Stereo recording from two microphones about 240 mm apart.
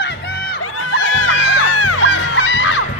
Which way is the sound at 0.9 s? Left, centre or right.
Left.